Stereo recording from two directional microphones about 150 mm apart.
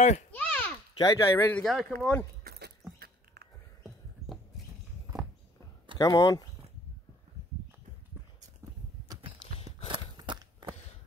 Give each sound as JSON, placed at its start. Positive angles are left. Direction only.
{"t": 0.0, "sound": "a child's voice", "side_deg": 50}
{"t": 0.3, "sound": "a sound", "side_deg": 10}
{"t": 0.9, "sound": "speech", "side_deg": 25}
{"t": 1.5, "sound": "speech", "side_deg": 5}
{"t": 2.4, "sound": "goat", "side_deg": -90}
{"t": 5.9, "sound": "speech", "side_deg": 25}
{"t": 9.7, "sound": "a sound", "side_deg": -30}